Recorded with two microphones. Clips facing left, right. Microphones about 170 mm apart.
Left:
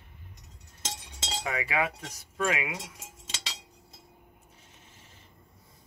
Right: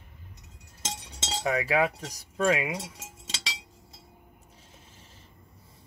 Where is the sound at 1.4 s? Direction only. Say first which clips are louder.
Right 5 dB; 35° right (ahead or behind).